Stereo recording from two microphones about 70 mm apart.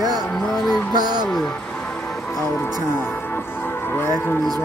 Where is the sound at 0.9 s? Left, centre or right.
Right.